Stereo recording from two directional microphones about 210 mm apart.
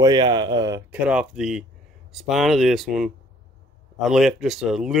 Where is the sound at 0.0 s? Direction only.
20° right (ahead or behind).